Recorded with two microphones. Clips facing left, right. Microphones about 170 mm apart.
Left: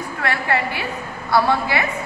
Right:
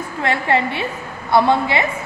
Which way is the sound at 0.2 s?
25° right (ahead or behind).